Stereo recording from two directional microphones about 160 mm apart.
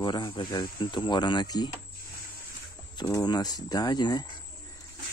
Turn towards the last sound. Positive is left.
turn(degrees=25)  # may be behind; listen again after turning